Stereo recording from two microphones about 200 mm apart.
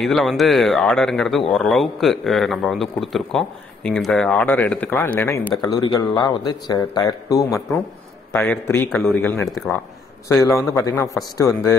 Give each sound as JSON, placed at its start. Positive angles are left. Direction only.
{"t": 0.0, "sound": "a man's voice", "side_deg": 0}
{"t": 10.4, "sound": "a man's voice", "side_deg": 15}